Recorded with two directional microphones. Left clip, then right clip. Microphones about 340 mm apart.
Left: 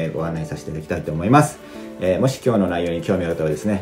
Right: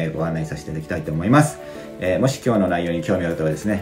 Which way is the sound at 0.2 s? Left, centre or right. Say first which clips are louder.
Right 1 dB; centre.